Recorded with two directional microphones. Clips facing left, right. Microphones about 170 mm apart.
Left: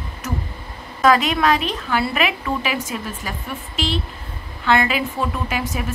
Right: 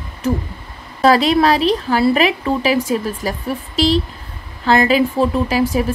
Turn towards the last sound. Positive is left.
turn(degrees=-35)  # may be behind; listen again after turning